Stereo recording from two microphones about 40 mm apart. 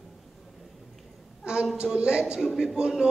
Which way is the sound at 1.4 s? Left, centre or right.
Right.